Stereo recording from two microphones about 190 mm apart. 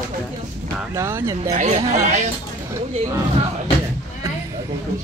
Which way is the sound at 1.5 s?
40° right (ahead or behind).